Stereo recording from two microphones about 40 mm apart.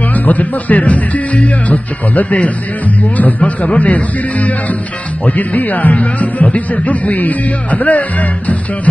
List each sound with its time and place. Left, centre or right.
0.1 s speech: left